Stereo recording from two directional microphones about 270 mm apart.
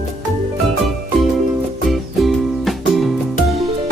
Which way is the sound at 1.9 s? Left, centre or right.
Centre.